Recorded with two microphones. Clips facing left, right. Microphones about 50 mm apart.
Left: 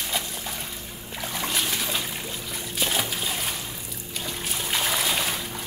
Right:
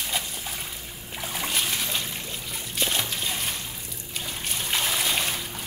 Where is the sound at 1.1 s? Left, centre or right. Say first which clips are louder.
Left 1 dB; centre.